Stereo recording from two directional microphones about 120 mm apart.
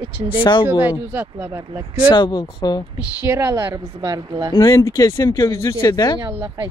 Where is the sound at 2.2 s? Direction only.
40° left (ahead or behind).